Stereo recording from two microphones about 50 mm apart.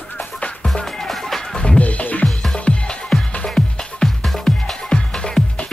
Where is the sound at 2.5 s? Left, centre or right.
Left.